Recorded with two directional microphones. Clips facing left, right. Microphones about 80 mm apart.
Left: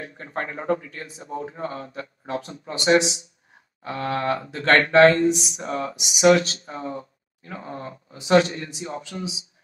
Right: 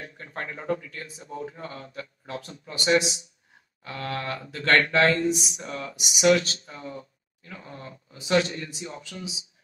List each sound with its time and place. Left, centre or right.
0.0 s a man's voice: left